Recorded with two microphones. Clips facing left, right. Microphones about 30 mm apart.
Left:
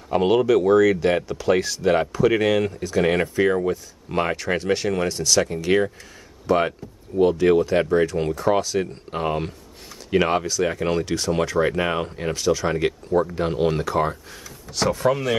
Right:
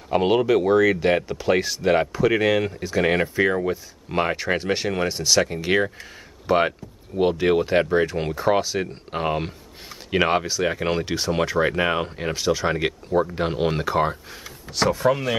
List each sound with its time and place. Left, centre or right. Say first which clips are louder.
0.1 s speech: left 1 dB; centre
14.7 s speech: right 1 dB; centre